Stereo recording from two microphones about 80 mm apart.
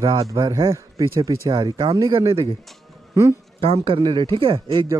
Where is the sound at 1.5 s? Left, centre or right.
Right.